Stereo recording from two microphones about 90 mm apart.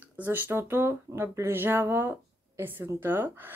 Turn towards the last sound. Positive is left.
turn(degrees=-25)  # may be behind; listen again after turning